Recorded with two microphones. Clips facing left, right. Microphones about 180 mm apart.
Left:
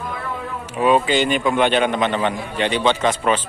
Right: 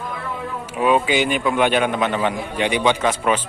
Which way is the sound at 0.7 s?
5° right (ahead or behind).